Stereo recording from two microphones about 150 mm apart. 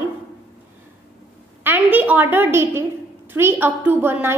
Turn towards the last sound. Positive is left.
turn(degrees=-15)  # may be behind; listen again after turning